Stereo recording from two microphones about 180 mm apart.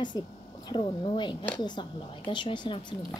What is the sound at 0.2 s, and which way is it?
A woman's voice, 25° left (ahead or behind).